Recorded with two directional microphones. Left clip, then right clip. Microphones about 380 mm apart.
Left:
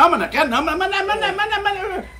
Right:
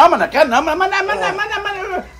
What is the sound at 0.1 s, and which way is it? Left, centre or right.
Speech, centre.